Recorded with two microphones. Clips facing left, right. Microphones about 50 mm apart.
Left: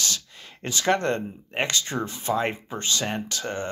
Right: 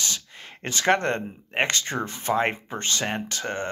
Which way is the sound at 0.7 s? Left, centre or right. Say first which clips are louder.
Right 1 dB; right.